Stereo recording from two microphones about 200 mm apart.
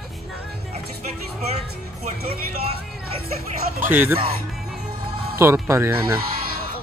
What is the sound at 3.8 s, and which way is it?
Speech, 10° right (ahead or behind).